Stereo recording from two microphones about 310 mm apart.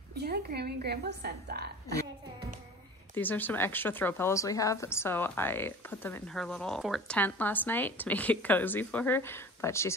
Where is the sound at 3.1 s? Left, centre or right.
Centre.